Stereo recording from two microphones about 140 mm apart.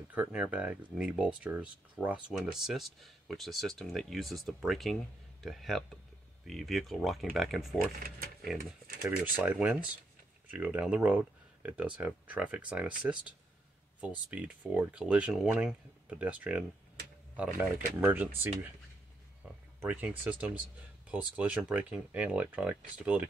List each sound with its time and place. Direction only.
0.1 s speech: 10° right (ahead or behind)
8.0 s speech: 90° right
9.2 s speech: 15° right (ahead or behind)
19.8 s speech: 10° right (ahead or behind)